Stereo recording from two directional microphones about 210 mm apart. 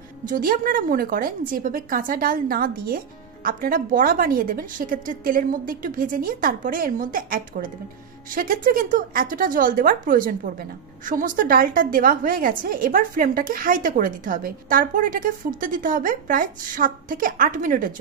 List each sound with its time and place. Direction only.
0.2 s a woman's voice: 40° right (ahead or behind)